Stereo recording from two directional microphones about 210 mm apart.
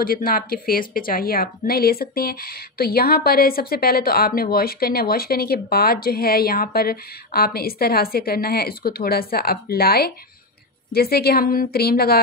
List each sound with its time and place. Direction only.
0.0 s a woman's voice: 45° left (ahead or behind)